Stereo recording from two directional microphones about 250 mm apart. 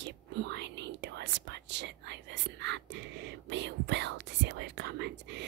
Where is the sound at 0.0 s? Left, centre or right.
Right.